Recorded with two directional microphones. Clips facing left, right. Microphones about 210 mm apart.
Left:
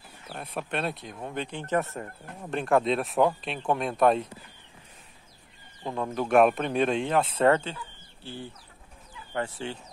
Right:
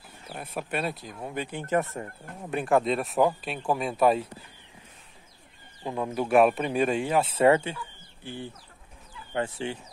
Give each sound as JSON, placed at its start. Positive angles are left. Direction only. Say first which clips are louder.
{"t": 0.3, "sound": "speech", "louder": "even", "side_deg": -5}
{"t": 5.9, "sound": "speech", "louder": "right 1 dB", "side_deg": -10}